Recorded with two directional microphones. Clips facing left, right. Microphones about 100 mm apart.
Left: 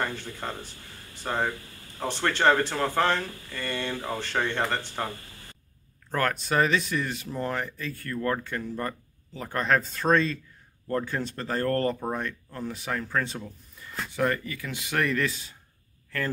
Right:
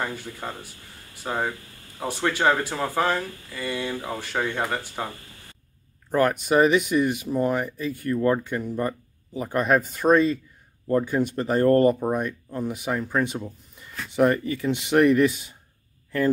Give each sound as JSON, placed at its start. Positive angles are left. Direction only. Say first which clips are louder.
{"t": 0.0, "sound": "speech", "louder": "right 1 dB", "side_deg": -10}